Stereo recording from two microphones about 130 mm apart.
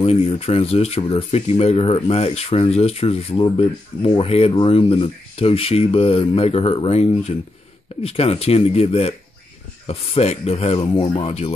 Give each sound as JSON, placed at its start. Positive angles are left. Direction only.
{"t": 0.0, "sound": "speech", "side_deg": 50}